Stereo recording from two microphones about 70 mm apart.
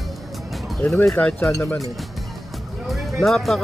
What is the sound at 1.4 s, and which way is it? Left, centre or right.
Speech, left.